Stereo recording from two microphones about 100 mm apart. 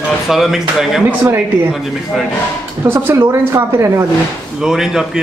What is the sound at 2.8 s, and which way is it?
Speech, 20° right (ahead or behind).